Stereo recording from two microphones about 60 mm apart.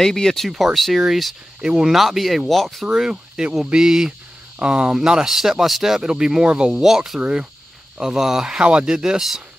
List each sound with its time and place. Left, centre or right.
0.0 s speech: centre
1.6 s speech: centre
2.9 s speech: centre
6.7 s speech: centre
7.2 s speech: centre